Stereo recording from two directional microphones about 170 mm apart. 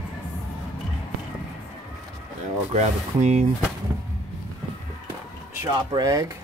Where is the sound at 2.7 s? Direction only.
40° right (ahead or behind).